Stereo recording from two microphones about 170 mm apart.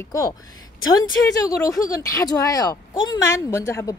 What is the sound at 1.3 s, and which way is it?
Speech, 20° left (ahead or behind).